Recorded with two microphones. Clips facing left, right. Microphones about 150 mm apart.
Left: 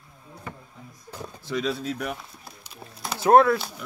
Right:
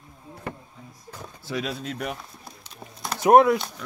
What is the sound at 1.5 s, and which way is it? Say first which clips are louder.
Speech: left 3 dB; centre (ahead or behind).